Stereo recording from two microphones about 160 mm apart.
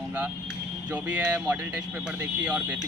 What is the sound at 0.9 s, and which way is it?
Speech, 10° right (ahead or behind).